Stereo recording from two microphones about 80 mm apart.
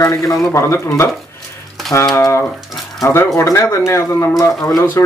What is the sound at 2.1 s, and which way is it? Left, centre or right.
Speech, left.